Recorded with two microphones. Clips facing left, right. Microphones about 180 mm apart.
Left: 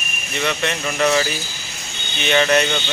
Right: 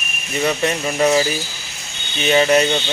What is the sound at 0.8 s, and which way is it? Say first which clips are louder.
Speech: right 2 dB; 25° right (ahead or behind).